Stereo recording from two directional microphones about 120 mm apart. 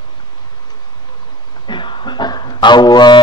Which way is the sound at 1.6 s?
40° left (ahead or behind).